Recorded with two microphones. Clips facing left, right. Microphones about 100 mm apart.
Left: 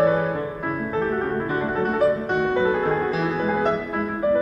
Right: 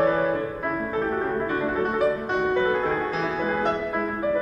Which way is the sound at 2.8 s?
5° left (ahead or behind).